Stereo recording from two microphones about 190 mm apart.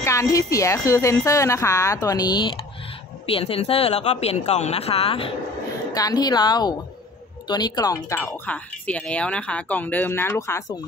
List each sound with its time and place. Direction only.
0.0 s speech: 15° left (ahead or behind)
5.9 s speech: 20° left (ahead or behind)